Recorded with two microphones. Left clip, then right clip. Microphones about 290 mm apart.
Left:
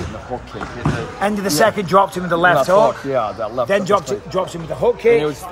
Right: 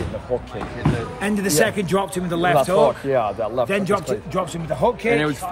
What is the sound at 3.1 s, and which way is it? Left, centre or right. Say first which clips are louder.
Speech: left 1 dB; centre.